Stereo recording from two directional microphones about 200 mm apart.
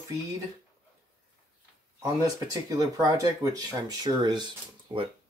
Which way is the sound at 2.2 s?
20° right (ahead or behind).